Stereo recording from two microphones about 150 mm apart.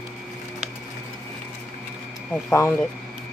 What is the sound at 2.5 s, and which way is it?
Speech, 15° left (ahead or behind).